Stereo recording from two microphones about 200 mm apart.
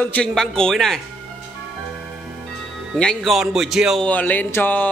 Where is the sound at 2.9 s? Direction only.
5° left (ahead or behind).